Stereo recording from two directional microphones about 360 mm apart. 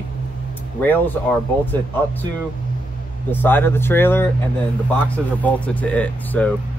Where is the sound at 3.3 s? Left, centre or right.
Centre.